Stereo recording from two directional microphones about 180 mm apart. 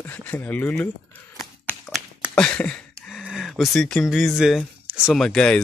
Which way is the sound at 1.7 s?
Centre (ahead or behind).